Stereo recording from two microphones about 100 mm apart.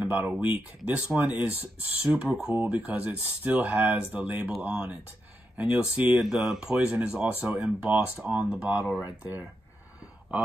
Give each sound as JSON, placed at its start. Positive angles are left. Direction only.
{"t": 0.0, "sound": "speech", "side_deg": -15}